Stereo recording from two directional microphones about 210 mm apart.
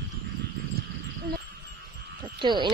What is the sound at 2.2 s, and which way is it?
Frog, 20° right (ahead or behind).